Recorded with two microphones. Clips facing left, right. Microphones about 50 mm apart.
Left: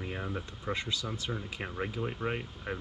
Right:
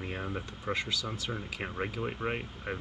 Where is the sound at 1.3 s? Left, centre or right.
Centre.